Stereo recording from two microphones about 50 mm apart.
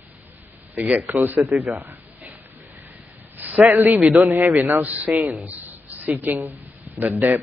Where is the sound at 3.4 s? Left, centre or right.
Right.